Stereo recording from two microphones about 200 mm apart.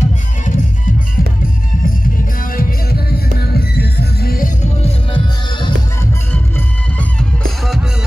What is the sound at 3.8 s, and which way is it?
Music, 50° left (ahead or behind).